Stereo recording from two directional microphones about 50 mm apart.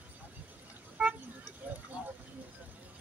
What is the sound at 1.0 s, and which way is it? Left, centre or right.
Vehicle, right.